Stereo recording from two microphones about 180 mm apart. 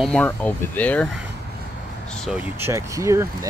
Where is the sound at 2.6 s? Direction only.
15° right (ahead or behind).